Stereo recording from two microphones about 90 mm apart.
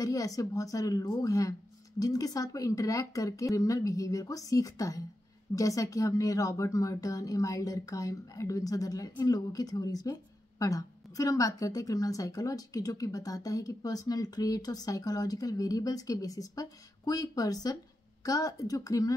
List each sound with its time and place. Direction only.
0.0 s a woman's voice: 40° left (ahead or behind)